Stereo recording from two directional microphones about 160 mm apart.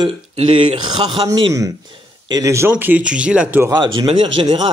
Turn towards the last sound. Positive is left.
turn(degrees=-30)  # may be behind; listen again after turning